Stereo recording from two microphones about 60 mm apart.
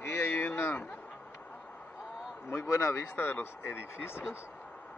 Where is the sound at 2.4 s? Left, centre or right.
Left.